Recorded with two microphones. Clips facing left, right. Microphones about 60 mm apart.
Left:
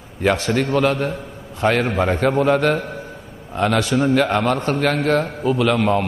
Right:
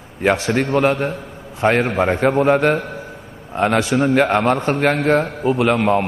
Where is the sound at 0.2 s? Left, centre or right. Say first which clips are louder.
Right 1 dB; right.